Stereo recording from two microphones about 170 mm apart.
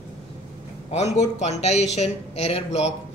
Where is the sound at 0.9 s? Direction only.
40° left (ahead or behind).